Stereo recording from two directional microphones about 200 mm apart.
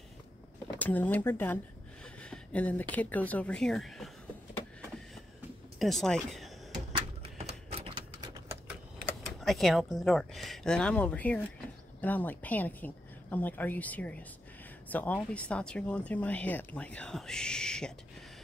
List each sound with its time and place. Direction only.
0.7 s a woman's voice: 10° left (ahead or behind)
5.8 s a sound: centre (ahead or behind)
7.3 s typewriter: 30° right (ahead or behind)
9.4 s a woman's voice: centre (ahead or behind)